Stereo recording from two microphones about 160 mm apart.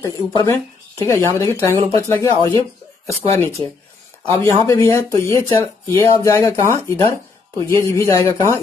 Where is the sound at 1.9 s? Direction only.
20° left (ahead or behind).